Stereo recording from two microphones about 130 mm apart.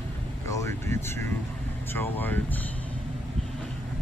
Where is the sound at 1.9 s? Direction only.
15° left (ahead or behind).